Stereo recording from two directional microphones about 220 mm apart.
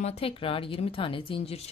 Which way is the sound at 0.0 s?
25° left (ahead or behind).